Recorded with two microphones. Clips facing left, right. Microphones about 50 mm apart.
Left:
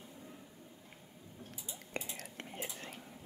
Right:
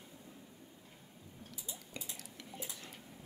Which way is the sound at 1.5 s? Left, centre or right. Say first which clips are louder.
Left 6 dB; left.